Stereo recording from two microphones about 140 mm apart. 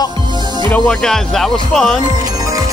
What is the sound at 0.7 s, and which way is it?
Speech, 5° left (ahead or behind).